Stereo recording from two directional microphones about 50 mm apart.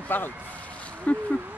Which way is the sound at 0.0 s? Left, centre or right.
Left.